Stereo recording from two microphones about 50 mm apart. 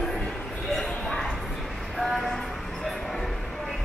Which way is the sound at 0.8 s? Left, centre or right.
Centre.